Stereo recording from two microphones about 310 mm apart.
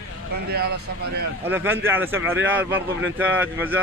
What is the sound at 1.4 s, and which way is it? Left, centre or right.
A man's voice, centre.